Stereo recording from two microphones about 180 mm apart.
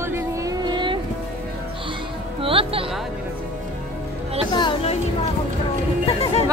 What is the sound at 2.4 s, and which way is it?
Music, 30° right (ahead or behind).